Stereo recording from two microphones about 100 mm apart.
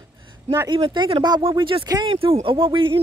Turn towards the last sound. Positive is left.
turn(degrees=-55)  # may be behind; listen again after turning